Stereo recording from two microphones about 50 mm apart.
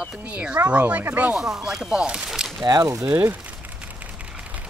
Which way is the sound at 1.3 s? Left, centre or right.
Centre.